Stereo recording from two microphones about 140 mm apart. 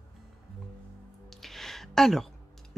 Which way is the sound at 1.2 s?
Centre (ahead or behind).